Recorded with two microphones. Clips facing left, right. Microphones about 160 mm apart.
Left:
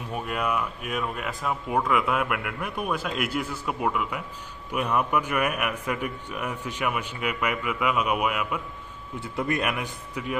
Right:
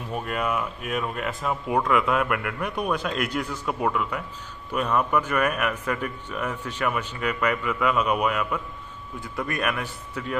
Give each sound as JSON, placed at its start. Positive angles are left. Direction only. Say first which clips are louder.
{"t": 0.1, "sound": "a man's voice", "louder": "right 1 dB", "side_deg": 5}
{"t": 9.2, "sound": "speech", "louder": "left 1 dB", "side_deg": 20}